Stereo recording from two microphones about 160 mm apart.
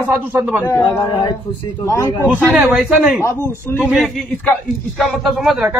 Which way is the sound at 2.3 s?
10° right (ahead or behind).